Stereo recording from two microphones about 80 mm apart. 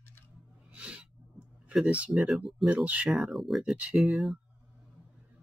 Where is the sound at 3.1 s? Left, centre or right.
Centre.